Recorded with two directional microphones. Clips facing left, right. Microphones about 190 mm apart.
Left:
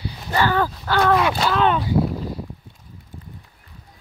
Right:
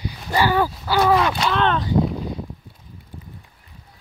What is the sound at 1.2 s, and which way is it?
Speech, centre (ahead or behind).